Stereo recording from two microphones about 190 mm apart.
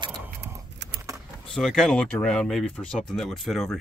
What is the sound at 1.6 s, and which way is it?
Speech, centre (ahead or behind).